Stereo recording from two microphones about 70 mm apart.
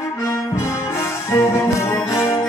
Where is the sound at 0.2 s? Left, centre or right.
Left.